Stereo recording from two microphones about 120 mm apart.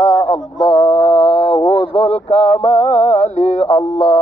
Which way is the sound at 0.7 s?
35° left (ahead or behind).